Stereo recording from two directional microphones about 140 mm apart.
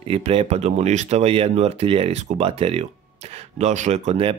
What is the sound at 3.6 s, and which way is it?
Speech, 55° right (ahead or behind).